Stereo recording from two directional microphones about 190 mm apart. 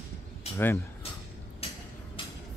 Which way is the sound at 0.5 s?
10° left (ahead or behind).